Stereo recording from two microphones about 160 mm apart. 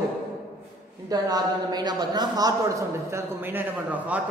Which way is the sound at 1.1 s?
25° right (ahead or behind).